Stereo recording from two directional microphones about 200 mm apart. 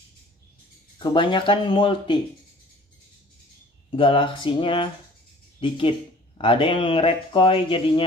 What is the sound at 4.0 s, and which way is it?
Speech, 25° left (ahead or behind).